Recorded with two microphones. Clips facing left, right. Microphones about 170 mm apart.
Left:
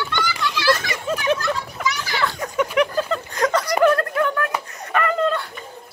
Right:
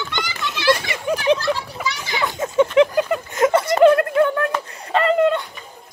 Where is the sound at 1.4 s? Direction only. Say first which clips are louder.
Right 1 dB; 30° right (ahead or behind).